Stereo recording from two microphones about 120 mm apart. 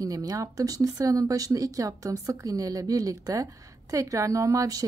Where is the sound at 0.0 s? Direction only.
30° right (ahead or behind).